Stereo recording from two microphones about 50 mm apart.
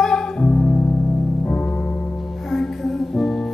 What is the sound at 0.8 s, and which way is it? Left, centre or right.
Music, left.